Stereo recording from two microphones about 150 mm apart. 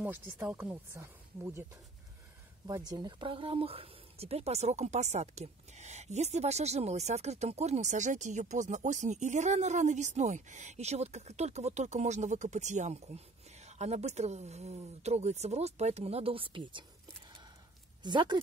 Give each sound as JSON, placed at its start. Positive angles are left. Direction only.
{"t": 0.0, "sound": "speech", "side_deg": -10}
{"t": 18.0, "sound": "speech", "side_deg": -30}